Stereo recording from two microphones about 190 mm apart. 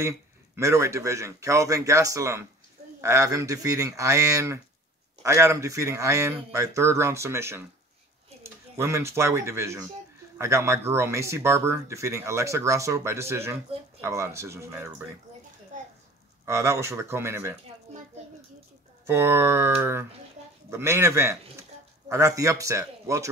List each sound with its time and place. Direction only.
0.6 s speech: 15° right (ahead or behind)
16.4 s speech: 15° right (ahead or behind)
19.0 s speech: 15° right (ahead or behind)